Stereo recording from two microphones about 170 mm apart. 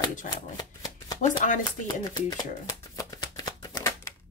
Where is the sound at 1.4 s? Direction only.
45° left (ahead or behind).